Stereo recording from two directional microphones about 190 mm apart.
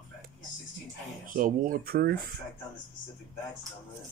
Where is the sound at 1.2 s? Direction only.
45° right (ahead or behind).